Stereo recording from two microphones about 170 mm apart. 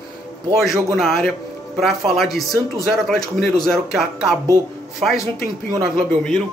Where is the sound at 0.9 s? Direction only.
Centre (ahead or behind).